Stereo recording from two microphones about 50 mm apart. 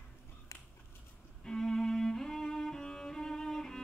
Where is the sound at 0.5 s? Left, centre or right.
Left.